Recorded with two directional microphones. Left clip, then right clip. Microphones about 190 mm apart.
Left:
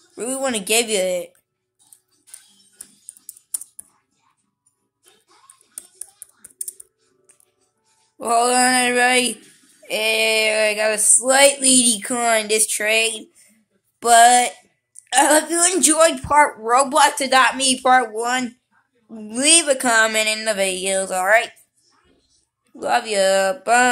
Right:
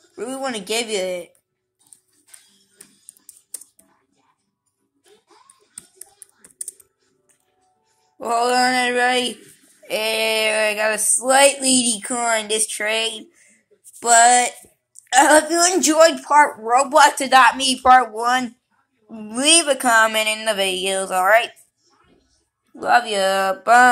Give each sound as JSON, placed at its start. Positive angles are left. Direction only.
{"t": 0.1, "sound": "speech", "side_deg": 40}
{"t": 8.2, "sound": "speech", "side_deg": 35}
{"t": 9.8, "sound": "female singing", "side_deg": 15}
{"t": 15.0, "sound": "speech", "side_deg": 15}
{"t": 19.1, "sound": "female singing", "side_deg": 20}
{"t": 22.8, "sound": "speech", "side_deg": 20}